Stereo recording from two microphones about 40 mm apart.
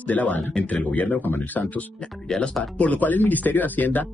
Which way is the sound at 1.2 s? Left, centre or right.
Left.